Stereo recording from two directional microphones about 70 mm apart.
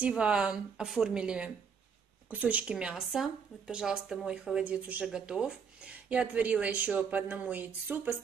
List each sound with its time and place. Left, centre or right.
0.2 s speech: centre
2.6 s speech: centre